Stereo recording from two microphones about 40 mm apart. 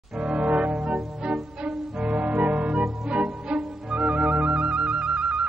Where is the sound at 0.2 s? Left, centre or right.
Right.